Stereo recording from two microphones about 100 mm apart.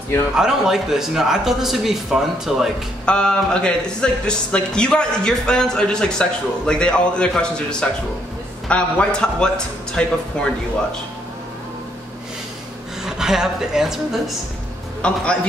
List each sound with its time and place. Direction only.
0.4 s a man's voice: 5° right (ahead or behind)
3.1 s speech: 10° left (ahead or behind)
13.0 s speech: 5° right (ahead or behind)
15.0 s a man's voice: 10° left (ahead or behind)